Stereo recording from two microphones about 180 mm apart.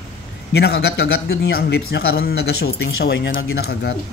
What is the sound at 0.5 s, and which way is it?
Speech, 65° left (ahead or behind).